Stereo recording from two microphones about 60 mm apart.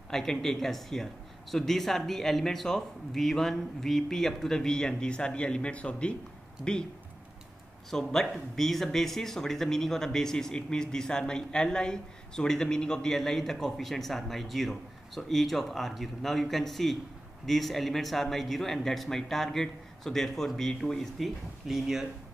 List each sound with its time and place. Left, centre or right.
0.1 s a man's voice: centre
7.9 s a man's voice: centre
21.6 s a man's voice: centre